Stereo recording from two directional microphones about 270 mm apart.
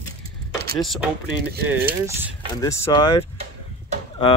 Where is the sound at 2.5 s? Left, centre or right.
Centre.